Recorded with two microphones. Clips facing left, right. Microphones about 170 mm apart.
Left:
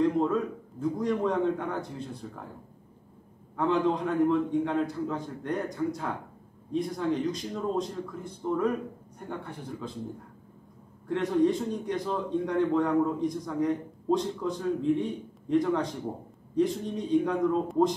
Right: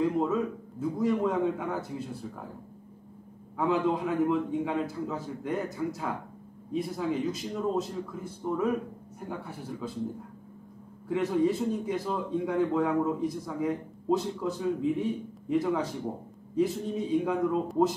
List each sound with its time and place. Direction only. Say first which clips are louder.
0.0 s a man's voice: left 1 dB; 5° right (ahead or behind)
3.5 s a man's voice: left 1 dB; 5° right (ahead or behind)
11.1 s a man's voice: left 1 dB; 5° right (ahead or behind)